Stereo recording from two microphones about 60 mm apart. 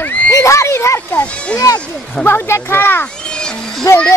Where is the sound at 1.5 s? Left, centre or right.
Left.